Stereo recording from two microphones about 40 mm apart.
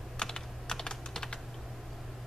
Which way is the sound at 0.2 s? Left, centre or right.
Centre.